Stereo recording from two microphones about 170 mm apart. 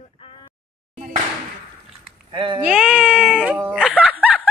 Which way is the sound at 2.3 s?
30° right (ahead or behind).